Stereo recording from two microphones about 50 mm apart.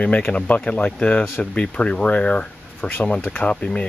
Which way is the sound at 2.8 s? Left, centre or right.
Left.